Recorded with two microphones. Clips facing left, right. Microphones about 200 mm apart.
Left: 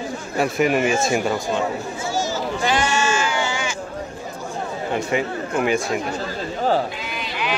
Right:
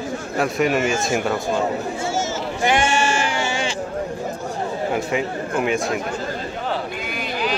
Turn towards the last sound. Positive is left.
turn(degrees=-40)  # may be behind; listen again after turning